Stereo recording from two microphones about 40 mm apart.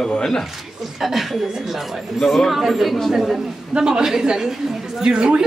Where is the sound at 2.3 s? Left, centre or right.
Centre.